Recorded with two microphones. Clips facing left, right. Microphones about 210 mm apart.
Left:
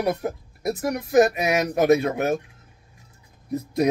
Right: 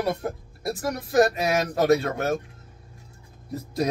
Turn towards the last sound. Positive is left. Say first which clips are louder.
# left 5 dB
turn(degrees=20)  # may be behind; listen again after turning